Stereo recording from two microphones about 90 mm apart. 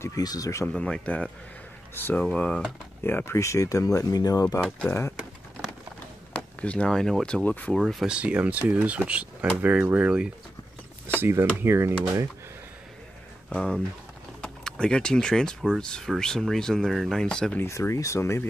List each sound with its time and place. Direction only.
0.0 s speech: 45° left (ahead or behind)
0.7 s speech: 10° left (ahead or behind)
3.0 s speech: 25° left (ahead or behind); by 4.6 s 45° left (ahead or behind)
4.6 s speech: 10° left (ahead or behind)
6.3 s speech: 15° left (ahead or behind)
7.4 s speech: 15° left (ahead or behind)
7.7 s speech: centre (ahead or behind)
8.2 s speech: 15° right (ahead or behind)
11.1 s speech: 25° right (ahead or behind)
13.5 s speech: 10° left (ahead or behind)
17.6 s speech: 30° left (ahead or behind)